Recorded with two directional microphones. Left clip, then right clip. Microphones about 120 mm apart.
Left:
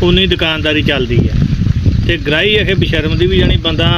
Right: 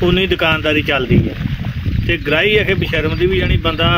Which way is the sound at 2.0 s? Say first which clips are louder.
Left 2 dB; 35° left (ahead or behind).